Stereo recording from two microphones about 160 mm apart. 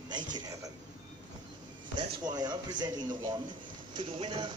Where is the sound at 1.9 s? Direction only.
25° right (ahead or behind).